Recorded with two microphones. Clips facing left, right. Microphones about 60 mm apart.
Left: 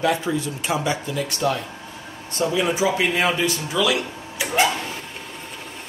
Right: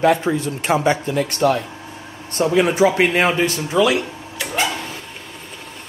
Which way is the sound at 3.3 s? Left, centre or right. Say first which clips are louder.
Right 3 dB; right.